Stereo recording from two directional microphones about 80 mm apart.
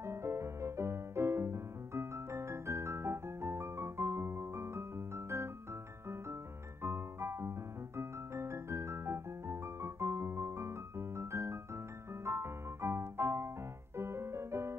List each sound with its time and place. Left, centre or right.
0.0 s music: right
6.8 s music: right